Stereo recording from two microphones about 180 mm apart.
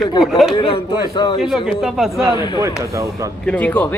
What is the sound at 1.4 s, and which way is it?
Speech, centre (ahead or behind).